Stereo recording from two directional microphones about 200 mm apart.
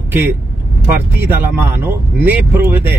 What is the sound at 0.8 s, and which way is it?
Speech, 10° right (ahead or behind).